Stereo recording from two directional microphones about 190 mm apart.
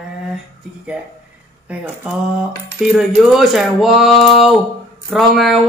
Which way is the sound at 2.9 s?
Centre (ahead or behind).